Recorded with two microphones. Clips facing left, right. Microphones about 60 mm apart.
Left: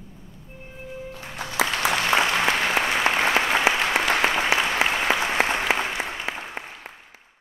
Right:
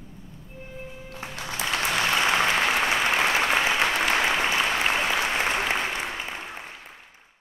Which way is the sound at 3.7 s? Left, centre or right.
Left.